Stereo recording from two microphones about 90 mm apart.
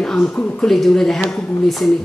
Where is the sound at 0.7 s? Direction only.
5° left (ahead or behind).